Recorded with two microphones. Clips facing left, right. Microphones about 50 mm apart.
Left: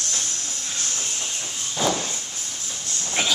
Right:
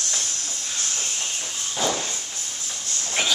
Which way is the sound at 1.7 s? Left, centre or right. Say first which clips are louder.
Left 2 dB; centre.